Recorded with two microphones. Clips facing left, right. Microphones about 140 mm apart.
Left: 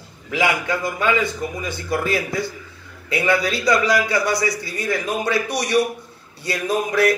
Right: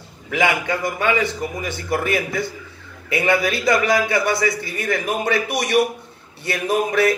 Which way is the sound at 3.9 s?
25° right (ahead or behind).